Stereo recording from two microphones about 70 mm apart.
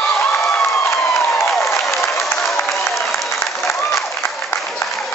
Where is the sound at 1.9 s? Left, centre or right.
Left.